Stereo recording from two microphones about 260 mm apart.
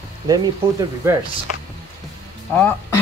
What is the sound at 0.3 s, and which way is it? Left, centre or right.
Speech, centre.